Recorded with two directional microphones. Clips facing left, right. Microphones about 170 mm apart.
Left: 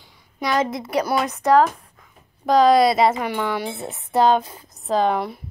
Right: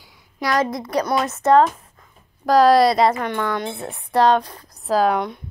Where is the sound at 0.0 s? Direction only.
10° right (ahead or behind).